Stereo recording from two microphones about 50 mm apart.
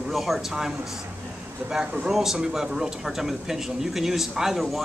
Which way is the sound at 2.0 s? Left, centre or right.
Centre.